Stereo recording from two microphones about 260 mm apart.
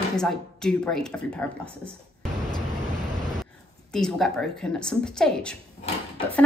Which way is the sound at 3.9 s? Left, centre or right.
Centre.